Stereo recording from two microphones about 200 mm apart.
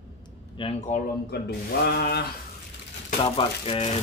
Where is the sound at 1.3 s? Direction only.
55° left (ahead or behind).